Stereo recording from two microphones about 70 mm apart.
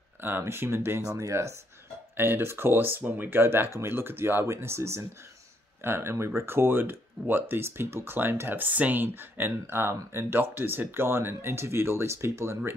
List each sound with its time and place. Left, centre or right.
0.2 s speech: right
1.1 s speech: right
2.1 s speech: right